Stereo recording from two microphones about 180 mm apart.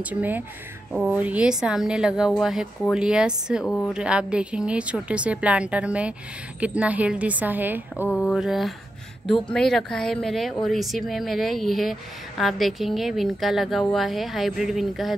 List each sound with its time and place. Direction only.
0.0 s speech: 10° right (ahead or behind)
3.6 s a woman's voice: 10° left (ahead or behind)
3.9 s speech: 5° right (ahead or behind)
8.1 s speech: centre (ahead or behind)